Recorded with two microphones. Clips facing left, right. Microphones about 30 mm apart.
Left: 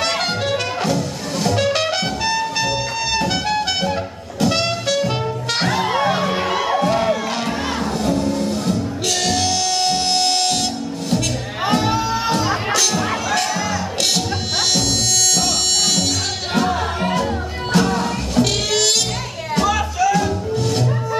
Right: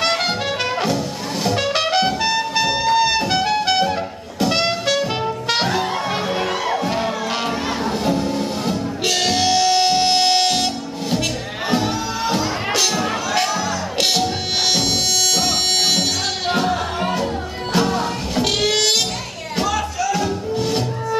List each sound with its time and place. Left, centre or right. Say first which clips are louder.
0.0 s music: right 1 dB; centre
5.9 s music: left 3 dB; centre
7.8 s music: left 1 dB; centre
11.6 s music: left 2 dB; centre
12.9 s music: even; centre
15.3 s music: right 1 dB; centre
19.7 s music: left 3 dB; centre